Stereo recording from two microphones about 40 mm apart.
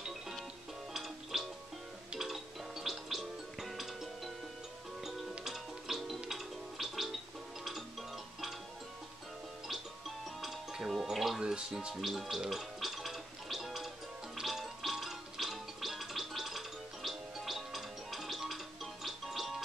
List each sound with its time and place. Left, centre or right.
0.9 s music: centre
5.4 s music: centre
9.7 s music: centre
11.3 s music: centre
11.9 s gargling: centre
14.3 s music: centre